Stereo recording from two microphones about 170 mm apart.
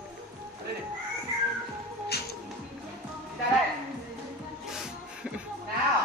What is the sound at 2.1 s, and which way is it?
Music, 70° left (ahead or behind).